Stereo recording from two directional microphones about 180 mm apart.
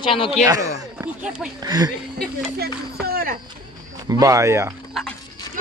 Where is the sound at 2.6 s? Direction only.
55° right (ahead or behind).